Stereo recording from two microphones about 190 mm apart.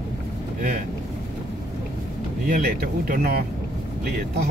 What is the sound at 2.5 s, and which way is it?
Speech, 50° right (ahead or behind).